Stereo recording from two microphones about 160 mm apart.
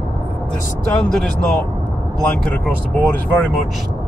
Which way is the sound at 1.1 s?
5° left (ahead or behind).